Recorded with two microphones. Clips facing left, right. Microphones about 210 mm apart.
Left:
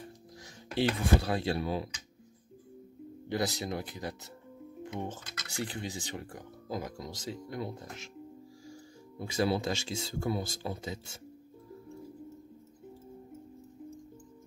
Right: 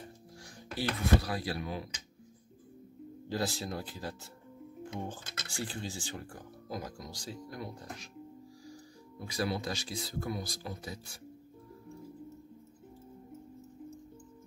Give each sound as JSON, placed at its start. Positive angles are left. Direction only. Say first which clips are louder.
{"t": 1.2, "sound": "speech", "louder": "left 5 dB", "side_deg": 25}
{"t": 3.3, "sound": "speech", "louder": "left 2 dB", "side_deg": 20}
{"t": 9.2, "sound": "speech", "louder": "left 5 dB", "side_deg": 25}